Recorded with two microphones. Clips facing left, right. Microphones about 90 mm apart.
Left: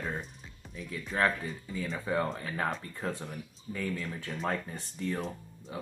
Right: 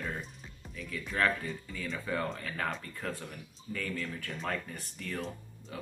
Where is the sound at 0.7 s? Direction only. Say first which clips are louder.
Left 1 dB; 25° left (ahead or behind).